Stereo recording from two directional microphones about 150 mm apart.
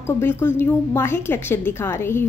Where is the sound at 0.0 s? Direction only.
15° left (ahead or behind).